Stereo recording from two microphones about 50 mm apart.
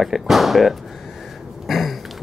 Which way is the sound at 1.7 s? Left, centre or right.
Centre.